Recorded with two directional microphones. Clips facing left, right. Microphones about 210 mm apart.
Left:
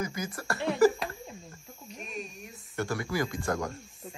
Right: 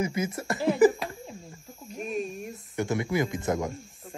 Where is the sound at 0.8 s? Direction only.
15° right (ahead or behind).